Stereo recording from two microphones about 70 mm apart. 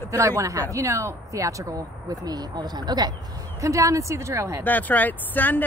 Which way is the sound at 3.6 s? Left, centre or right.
Right.